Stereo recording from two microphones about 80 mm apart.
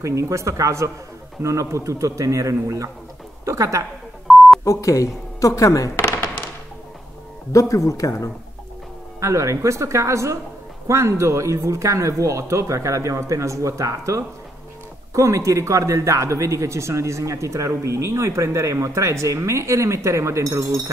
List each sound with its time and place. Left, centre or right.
0.0 s a man's voice: right
4.3 s beep: centre
4.6 s speech: left
7.5 s speech: left
9.2 s a man's voice: right